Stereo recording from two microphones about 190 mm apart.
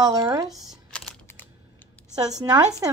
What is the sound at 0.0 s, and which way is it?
Speech, 20° right (ahead or behind).